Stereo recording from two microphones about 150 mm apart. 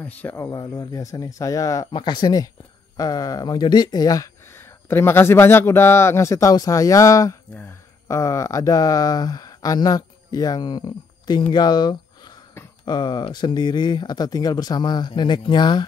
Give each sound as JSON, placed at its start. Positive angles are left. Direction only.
{"t": 0.0, "sound": "speech", "side_deg": 15}